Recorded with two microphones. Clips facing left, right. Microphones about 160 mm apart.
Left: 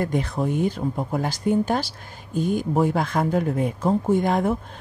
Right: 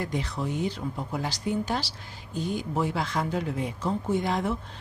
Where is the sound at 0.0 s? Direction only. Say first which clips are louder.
Left 7 dB; 50° left (ahead or behind).